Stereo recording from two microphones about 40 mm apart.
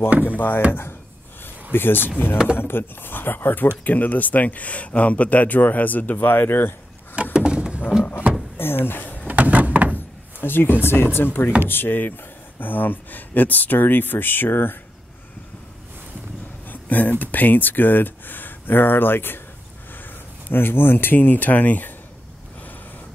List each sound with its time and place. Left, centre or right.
0.6 s speech: right
1.4 s speech: left
3.8 s speech: left
7.3 s a sound: right
8.5 s speech: left
9.3 s door: right
9.9 s drawer open or close: left
10.8 s speech: left
16.6 s speech: left
20.5 s speech: left